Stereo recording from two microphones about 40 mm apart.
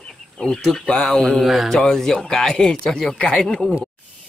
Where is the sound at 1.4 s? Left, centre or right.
Centre.